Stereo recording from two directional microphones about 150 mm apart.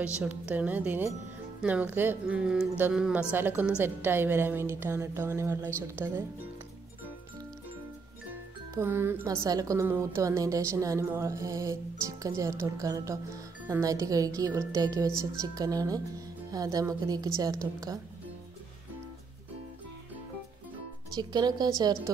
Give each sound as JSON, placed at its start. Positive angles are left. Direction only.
{"t": 0.0, "sound": "speech", "side_deg": -10}
{"t": 8.7, "sound": "a woman's voice", "side_deg": -15}
{"t": 21.1, "sound": "a woman's voice", "side_deg": -30}